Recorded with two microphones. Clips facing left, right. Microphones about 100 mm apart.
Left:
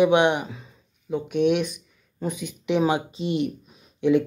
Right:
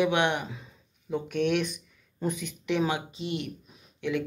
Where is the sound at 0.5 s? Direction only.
5° left (ahead or behind); by 4.2 s 25° left (ahead or behind).